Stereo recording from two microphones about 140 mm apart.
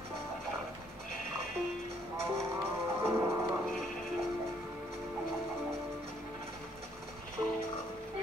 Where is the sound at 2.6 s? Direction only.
20° right (ahead or behind).